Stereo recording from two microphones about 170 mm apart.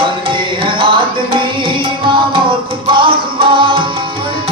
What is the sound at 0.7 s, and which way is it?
Music, 30° right (ahead or behind).